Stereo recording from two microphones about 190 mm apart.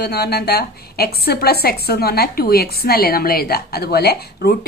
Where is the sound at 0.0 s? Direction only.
55° left (ahead or behind).